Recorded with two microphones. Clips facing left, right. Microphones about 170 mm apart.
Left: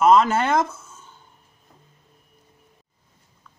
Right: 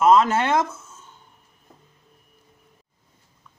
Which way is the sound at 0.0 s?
Centre (ahead or behind).